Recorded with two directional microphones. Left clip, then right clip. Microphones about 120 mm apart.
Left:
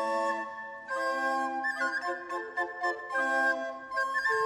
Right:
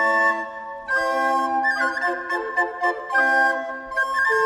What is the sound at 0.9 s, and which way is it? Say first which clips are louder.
Organ: right 10 dB; 40° right (ahead or behind).